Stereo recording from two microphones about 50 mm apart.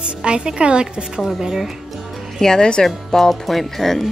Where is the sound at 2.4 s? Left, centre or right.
Centre.